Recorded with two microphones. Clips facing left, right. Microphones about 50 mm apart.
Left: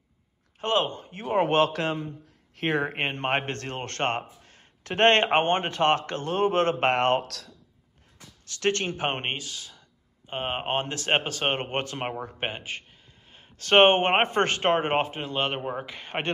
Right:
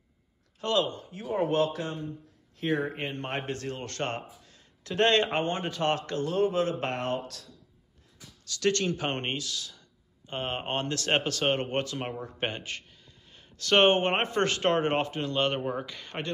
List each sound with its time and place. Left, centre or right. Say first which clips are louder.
0.6 s a man's voice: left 2 dB; left
8.5 s speech: left 1 dB; left
12.4 s speech: left 1 dB; centre
13.3 s speech: left 4 dB; left